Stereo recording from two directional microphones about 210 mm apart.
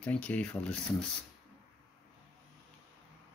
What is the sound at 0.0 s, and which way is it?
Speech, 5° left (ahead or behind).